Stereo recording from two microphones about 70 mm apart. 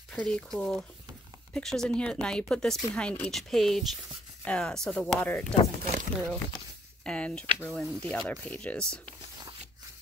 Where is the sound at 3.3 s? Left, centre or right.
Centre.